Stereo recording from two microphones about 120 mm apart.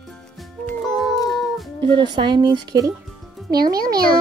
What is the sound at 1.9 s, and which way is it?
Speech, 40° right (ahead or behind).